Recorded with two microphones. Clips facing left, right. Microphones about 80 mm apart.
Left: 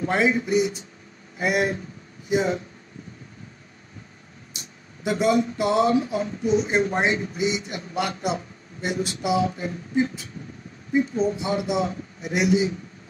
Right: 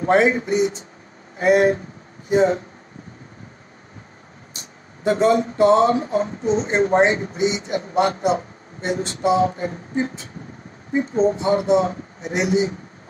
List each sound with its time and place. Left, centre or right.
0.0 s speech: right
5.0 s speech: right